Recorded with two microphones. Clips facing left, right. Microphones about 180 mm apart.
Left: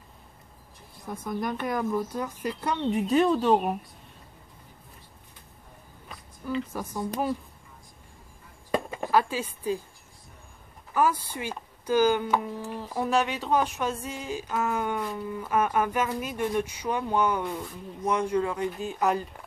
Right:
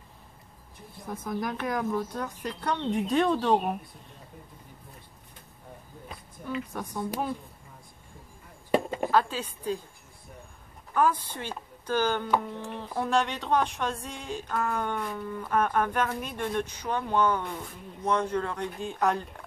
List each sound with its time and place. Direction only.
1.0 s speech: centre (ahead or behind)
6.4 s speech: centre (ahead or behind)
8.7 s chop: 25° right (ahead or behind)
9.1 s speech: 10° left (ahead or behind)
10.9 s speech: 5° left (ahead or behind)